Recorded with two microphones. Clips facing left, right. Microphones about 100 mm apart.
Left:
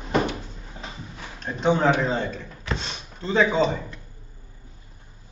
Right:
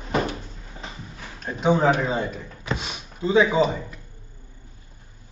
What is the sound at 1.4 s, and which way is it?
Speech, 5° right (ahead or behind).